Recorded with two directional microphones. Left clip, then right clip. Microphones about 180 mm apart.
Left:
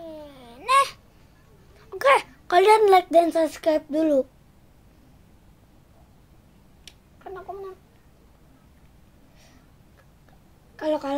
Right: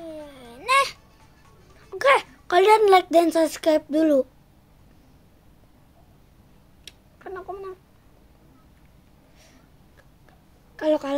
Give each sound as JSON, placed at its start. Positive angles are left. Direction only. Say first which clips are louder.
{"t": 0.0, "sound": "babbling", "louder": "right 2 dB", "side_deg": -15}
{"t": 1.8, "sound": "a woman's voice", "louder": "even", "side_deg": 0}
{"t": 6.8, "sound": "cat", "louder": "right 1 dB", "side_deg": -20}
{"t": 10.8, "sound": "a woman's voice", "louder": "right 3 dB", "side_deg": -25}